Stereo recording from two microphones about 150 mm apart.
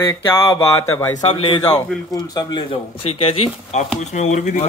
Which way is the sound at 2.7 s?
40° left (ahead or behind).